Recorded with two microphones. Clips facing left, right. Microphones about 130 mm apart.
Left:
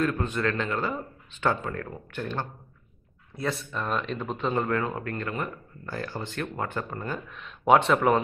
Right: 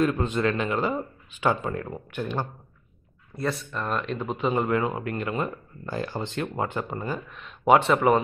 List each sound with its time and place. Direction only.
0.0 s speech: 20° right (ahead or behind)
3.3 s speech: centre (ahead or behind)
4.6 s speech: 20° right (ahead or behind)
7.1 s speech: centre (ahead or behind)